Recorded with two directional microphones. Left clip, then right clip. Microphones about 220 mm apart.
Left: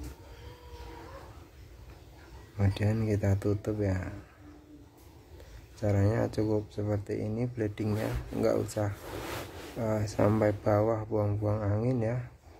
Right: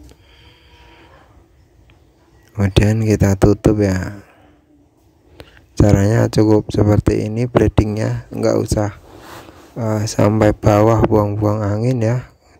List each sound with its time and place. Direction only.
2.5 s speech: 45° right (ahead or behind)
5.8 s speech: 45° right (ahead or behind)